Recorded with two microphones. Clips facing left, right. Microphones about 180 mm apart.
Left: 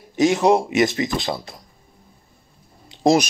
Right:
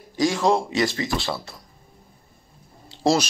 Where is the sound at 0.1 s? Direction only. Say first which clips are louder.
Left 4 dB; 20° left (ahead or behind).